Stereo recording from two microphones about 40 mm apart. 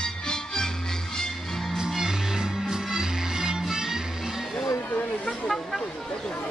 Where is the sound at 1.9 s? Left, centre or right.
Centre.